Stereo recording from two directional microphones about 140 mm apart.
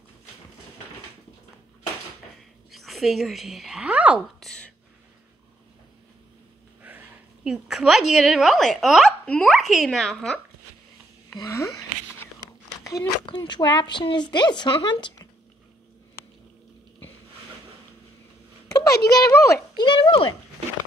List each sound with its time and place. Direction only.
2.7 s speech: centre (ahead or behind)
4.4 s speech: centre (ahead or behind)
6.8 s a woman's voice: 10° right (ahead or behind); by 10.4 s 5° left (ahead or behind)
11.3 s a sound: 25° left (ahead or behind)
12.8 s a woman's voice: 30° left (ahead or behind)
18.7 s a child's voice: 25° left (ahead or behind)
19.7 s a woman's voice: 35° left (ahead or behind)